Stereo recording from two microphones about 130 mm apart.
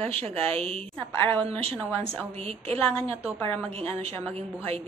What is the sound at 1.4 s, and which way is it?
A woman's voice, 50° right (ahead or behind).